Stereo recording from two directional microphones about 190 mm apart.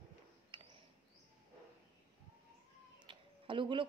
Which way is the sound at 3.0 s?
25° right (ahead or behind).